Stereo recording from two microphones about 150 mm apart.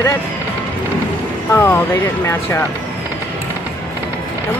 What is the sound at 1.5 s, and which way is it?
Speech, 15° left (ahead or behind).